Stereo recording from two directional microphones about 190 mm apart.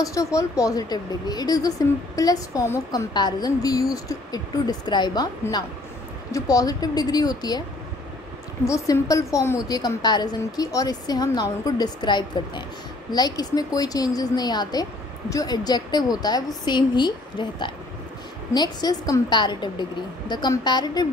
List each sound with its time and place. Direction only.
0.0 s a woman's voice: 15° left (ahead or behind)
8.6 s a woman's voice: 15° left (ahead or behind)